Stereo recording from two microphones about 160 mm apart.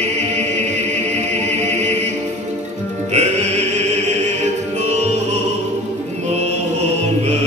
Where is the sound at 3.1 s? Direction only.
45° right (ahead or behind).